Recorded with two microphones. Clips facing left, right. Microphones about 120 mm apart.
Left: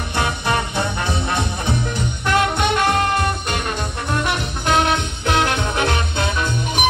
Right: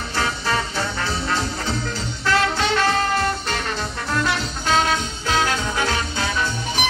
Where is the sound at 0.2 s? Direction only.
20° left (ahead or behind).